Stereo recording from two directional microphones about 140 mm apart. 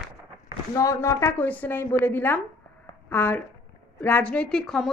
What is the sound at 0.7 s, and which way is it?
A woman's voice, 20° left (ahead or behind).